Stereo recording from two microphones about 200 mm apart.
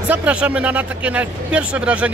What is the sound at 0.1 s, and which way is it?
Speech, 5° right (ahead or behind).